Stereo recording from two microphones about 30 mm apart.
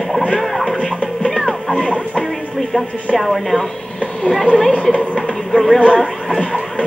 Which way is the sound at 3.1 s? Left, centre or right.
Centre.